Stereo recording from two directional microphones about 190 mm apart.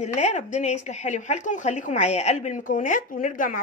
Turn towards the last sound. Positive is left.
turn(degrees=45)  # may be behind; listen again after turning